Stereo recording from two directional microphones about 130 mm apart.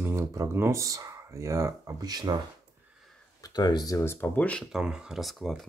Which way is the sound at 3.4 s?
35° left (ahead or behind).